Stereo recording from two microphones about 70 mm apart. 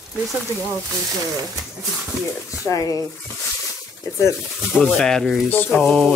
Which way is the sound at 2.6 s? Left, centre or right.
Left.